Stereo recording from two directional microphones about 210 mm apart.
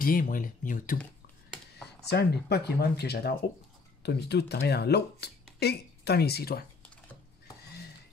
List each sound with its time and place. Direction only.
0.0 s speech: 40° left (ahead or behind)
2.0 s speech: 50° left (ahead or behind)